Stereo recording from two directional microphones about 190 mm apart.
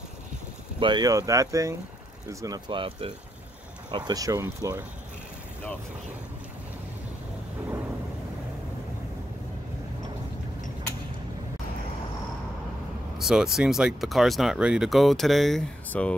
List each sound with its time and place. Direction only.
0.7 s speech: 25° right (ahead or behind)
13.2 s speech: centre (ahead or behind)